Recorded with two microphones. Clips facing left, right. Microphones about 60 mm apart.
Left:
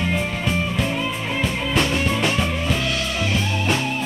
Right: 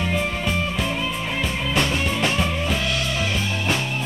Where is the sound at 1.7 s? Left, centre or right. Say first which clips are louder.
Left 2 dB; centre.